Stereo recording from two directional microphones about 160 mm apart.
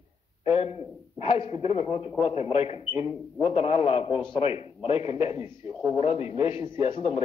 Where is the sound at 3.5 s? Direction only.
35° left (ahead or behind).